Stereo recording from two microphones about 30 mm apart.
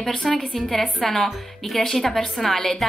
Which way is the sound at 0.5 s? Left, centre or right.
Centre.